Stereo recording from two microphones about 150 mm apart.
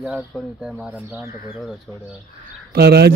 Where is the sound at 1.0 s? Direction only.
20° right (ahead or behind).